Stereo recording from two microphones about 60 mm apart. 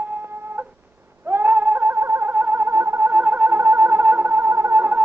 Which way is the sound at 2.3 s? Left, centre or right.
Right.